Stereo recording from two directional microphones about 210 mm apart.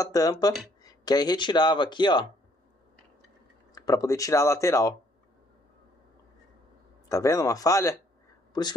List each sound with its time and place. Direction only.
0.0 s speech: 15° left (ahead or behind)
3.7 s speech: 15° left (ahead or behind)
7.1 s speech: 15° left (ahead or behind)